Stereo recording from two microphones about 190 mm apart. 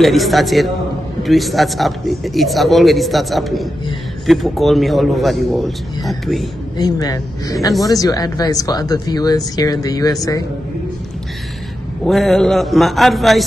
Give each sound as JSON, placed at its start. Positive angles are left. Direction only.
{"t": 0.0, "sound": "a man's voice", "side_deg": 0}
{"t": 6.8, "sound": "speech", "side_deg": 20}
{"t": 12.1, "sound": "a man's voice", "side_deg": 0}